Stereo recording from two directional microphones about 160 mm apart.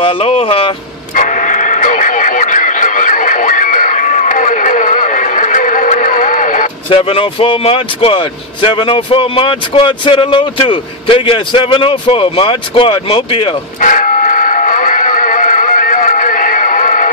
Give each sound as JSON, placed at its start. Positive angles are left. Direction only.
{"t": 0.0, "sound": "speech", "side_deg": 35}
{"t": 1.1, "sound": "radio", "side_deg": 50}
{"t": 6.9, "sound": "speech", "side_deg": 35}
{"t": 13.7, "sound": "music", "side_deg": 55}